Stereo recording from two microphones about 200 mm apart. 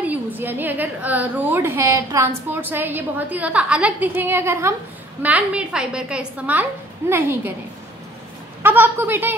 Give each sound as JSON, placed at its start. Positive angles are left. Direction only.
{"t": 0.0, "sound": "a woman's voice", "side_deg": -10}
{"t": 8.6, "sound": "a woman's voice", "side_deg": -10}